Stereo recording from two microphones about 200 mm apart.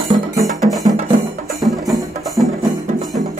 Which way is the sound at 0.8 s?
35° right (ahead or behind).